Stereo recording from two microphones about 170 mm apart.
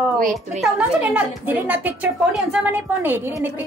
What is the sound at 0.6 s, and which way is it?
A woman's voice, 10° right (ahead or behind).